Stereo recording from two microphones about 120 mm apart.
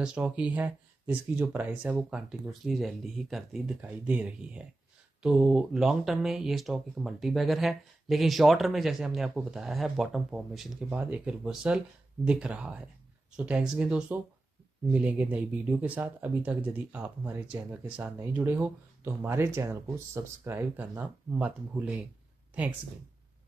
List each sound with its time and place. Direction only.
0.0 s speech: 10° right (ahead or behind)